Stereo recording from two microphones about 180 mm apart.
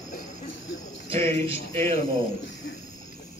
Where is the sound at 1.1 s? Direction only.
30° right (ahead or behind).